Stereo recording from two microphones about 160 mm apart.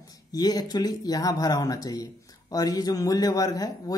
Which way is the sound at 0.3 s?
25° left (ahead or behind).